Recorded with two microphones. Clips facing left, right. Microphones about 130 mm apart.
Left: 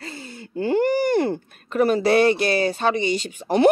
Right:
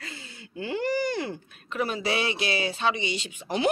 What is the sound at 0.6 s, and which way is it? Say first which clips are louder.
Speech: left 8 dB; 50° left (ahead or behind).